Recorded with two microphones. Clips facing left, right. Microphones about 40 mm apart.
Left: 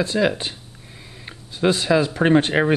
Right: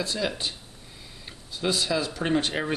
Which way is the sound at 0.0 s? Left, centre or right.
Left.